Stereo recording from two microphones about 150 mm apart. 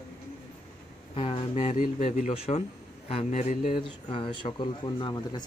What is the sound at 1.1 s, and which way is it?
Speech, 40° left (ahead or behind).